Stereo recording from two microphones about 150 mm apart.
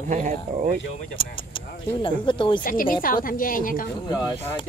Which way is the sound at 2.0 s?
35° left (ahead or behind).